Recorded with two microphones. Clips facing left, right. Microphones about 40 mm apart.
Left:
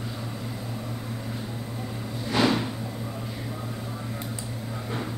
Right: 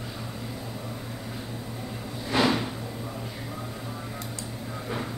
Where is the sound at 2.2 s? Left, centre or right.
Centre.